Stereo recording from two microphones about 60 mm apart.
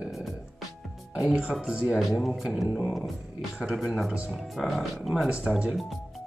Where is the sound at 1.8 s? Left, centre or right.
Centre.